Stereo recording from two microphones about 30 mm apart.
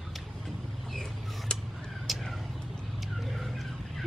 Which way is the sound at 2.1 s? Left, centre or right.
Centre.